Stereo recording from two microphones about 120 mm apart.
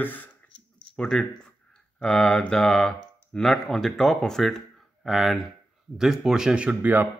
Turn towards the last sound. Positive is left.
turn(degrees=-15)  # may be behind; listen again after turning